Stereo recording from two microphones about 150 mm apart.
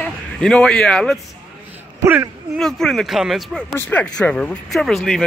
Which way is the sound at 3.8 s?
10° left (ahead or behind).